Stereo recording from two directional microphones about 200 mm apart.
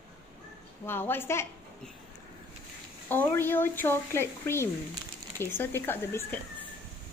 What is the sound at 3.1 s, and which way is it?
Speech, 10° left (ahead or behind).